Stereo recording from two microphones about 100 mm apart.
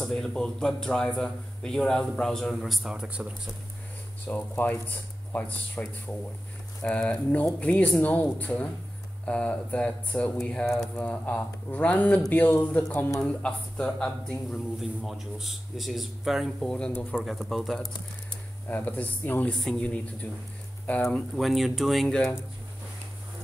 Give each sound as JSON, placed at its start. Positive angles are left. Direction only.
{"t": 0.0, "sound": "speech", "side_deg": 5}
{"t": 4.3, "sound": "speech", "side_deg": 15}
{"t": 18.7, "sound": "speech", "side_deg": 15}
{"t": 21.4, "sound": "speech", "side_deg": 0}